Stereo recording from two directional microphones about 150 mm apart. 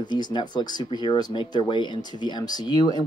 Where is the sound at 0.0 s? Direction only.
30° left (ahead or behind).